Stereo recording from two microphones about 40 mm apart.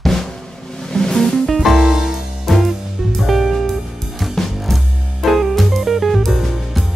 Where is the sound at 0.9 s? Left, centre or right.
Centre.